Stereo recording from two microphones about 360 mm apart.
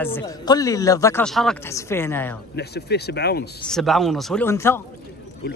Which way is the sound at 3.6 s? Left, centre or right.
Centre.